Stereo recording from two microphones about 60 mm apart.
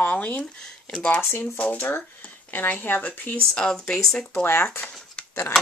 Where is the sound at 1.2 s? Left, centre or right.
Left.